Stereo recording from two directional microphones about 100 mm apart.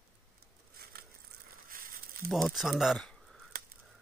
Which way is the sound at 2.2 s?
Centre (ahead or behind).